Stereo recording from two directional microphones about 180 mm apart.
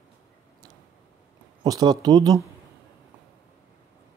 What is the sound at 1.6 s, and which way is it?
Speech, 20° right (ahead or behind).